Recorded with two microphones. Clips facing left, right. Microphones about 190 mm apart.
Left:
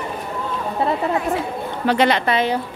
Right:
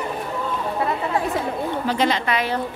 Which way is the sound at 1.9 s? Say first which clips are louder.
Left 5 dB; 65° left (ahead or behind).